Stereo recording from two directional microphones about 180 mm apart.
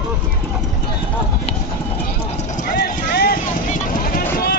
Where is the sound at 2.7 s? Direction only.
60° left (ahead or behind).